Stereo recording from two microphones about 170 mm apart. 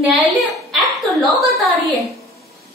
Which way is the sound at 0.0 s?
Centre (ahead or behind).